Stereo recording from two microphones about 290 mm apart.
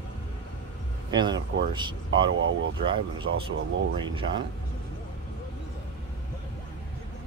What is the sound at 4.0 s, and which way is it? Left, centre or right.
Speech, centre.